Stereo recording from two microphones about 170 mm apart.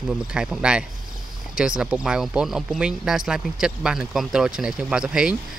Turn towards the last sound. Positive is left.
turn(degrees=-5)  # may be behind; listen again after turning